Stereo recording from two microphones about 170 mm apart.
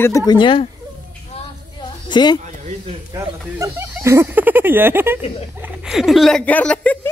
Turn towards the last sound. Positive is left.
turn(degrees=10)  # may be behind; listen again after turning